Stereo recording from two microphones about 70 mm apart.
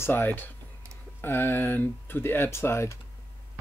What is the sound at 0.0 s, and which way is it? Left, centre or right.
Speech, left.